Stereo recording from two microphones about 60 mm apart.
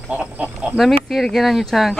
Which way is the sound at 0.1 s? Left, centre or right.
Right.